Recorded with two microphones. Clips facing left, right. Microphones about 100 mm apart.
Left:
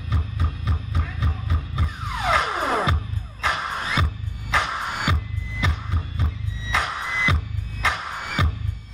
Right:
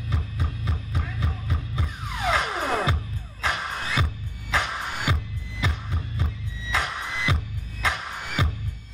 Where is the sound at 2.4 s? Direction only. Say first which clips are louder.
Left 3 dB; 20° left (ahead or behind).